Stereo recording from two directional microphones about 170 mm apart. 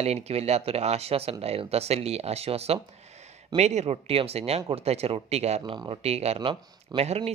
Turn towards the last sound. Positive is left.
turn(degrees=-35)  # may be behind; listen again after turning